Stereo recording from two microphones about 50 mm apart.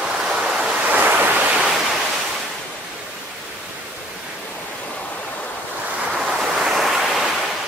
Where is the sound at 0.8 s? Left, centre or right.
Right.